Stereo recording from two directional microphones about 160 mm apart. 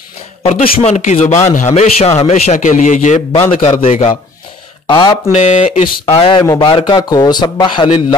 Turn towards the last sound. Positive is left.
turn(degrees=25)  # may be behind; listen again after turning